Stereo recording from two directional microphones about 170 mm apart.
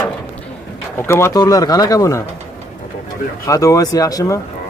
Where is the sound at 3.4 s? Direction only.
20° left (ahead or behind).